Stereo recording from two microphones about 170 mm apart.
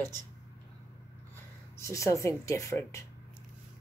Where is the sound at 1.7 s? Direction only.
15° left (ahead or behind).